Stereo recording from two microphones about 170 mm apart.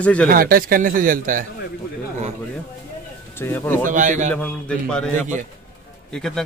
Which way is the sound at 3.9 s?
45° right (ahead or behind).